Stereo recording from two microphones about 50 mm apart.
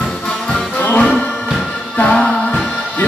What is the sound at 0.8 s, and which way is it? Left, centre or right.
Music, left.